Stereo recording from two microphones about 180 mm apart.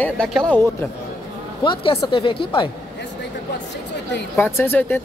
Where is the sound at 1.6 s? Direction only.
30° left (ahead or behind).